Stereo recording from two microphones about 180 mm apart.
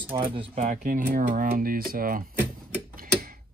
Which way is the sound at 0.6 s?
45° right (ahead or behind).